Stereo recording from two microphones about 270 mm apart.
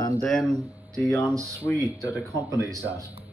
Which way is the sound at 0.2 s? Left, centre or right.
Centre.